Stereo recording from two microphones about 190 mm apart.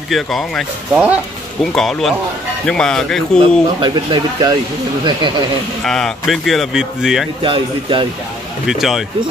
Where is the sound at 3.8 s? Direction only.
25° right (ahead or behind).